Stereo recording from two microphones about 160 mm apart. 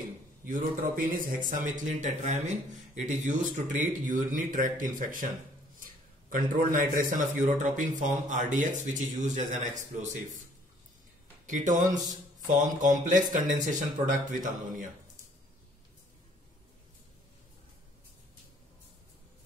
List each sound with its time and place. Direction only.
0.5 s a man's voice: 60° right (ahead or behind)
6.3 s speech: 55° right (ahead or behind)
11.4 s speech: 50° right (ahead or behind)